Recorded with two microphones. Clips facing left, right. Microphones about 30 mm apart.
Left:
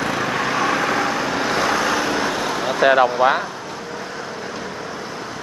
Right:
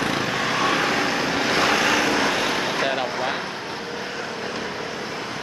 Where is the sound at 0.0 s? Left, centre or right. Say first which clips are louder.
Left 2 dB; right.